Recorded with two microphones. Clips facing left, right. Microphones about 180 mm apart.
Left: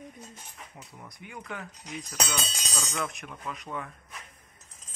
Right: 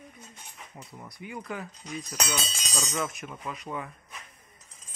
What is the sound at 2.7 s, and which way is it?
Cutlery, centre (ahead or behind).